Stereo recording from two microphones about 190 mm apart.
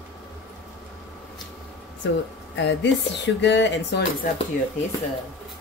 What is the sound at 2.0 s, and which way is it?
Speech, 75° left (ahead or behind).